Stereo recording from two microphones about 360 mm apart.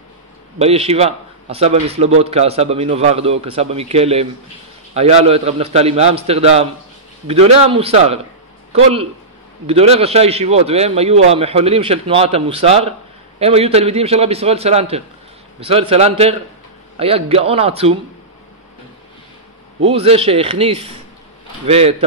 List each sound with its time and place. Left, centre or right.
0.6 s a man's voice: centre
19.8 s a man's voice: centre